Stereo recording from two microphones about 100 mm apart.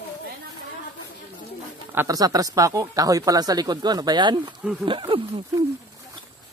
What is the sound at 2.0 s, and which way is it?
Speech, 40° right (ahead or behind).